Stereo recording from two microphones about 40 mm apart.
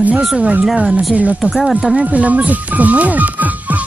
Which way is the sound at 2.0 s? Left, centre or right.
Right.